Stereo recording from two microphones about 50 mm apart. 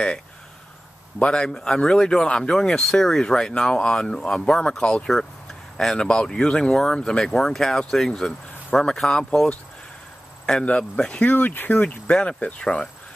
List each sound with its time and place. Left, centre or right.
1.2 s speech: centre
5.9 s speech: centre
10.6 s speech: left
11.3 s speech: left
12.1 s speech: left